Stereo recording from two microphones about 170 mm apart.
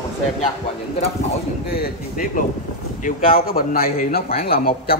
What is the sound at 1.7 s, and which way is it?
A man's voice, 60° left (ahead or behind).